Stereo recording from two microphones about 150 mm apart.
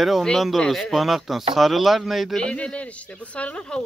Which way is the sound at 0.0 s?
Centre (ahead or behind).